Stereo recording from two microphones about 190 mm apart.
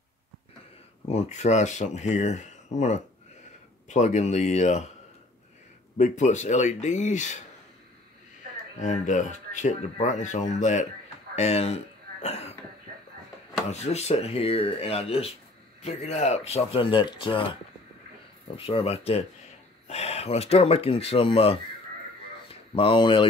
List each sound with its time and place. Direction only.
1.0 s speech: 35° left (ahead or behind)
5.9 s speech: 40° left (ahead or behind)
8.7 s speech: 40° left (ahead or behind)
13.7 s speech: 35° left (ahead or behind)
18.7 s speech: 30° left (ahead or behind)
22.8 s speech: 25° left (ahead or behind)